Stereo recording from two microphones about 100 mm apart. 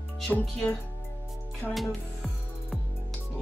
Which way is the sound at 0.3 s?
15° left (ahead or behind).